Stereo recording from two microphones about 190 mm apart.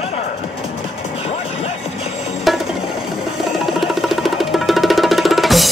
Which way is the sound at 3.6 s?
Centre (ahead or behind).